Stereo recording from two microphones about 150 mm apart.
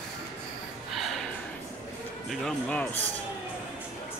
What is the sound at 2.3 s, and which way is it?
Speech, 5° left (ahead or behind).